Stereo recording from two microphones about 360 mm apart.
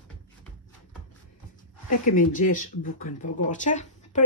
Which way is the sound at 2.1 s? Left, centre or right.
Left.